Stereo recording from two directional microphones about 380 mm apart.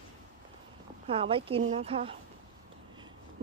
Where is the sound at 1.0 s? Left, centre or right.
Centre.